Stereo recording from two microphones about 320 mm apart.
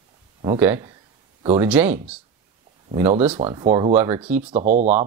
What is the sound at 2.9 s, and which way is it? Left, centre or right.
Speech, centre.